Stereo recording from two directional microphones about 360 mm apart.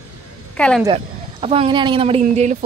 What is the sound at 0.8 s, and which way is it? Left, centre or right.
Speech, centre.